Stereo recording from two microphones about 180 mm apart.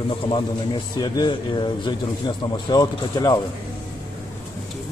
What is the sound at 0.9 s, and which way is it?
A man's voice, 25° left (ahead or behind).